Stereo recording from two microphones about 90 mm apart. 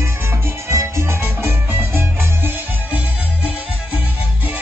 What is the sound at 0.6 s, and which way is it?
Music, 35° right (ahead or behind).